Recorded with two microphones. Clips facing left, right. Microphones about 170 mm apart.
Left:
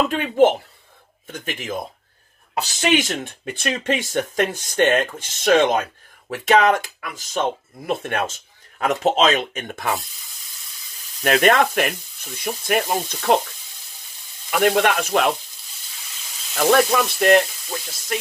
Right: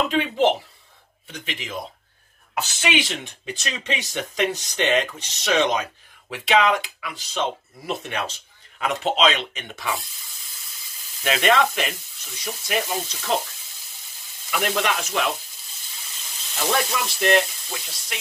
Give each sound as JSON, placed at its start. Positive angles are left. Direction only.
{"t": 0.1, "sound": "speech", "side_deg": 50}
{"t": 2.5, "sound": "speech", "side_deg": 40}
{"t": 11.2, "sound": "speech", "side_deg": 50}
{"t": 14.6, "sound": "speech", "side_deg": 55}
{"t": 16.5, "sound": "speech", "side_deg": 55}